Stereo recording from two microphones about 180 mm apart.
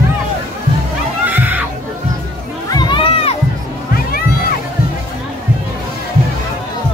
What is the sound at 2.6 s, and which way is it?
Crowd, 25° left (ahead or behind).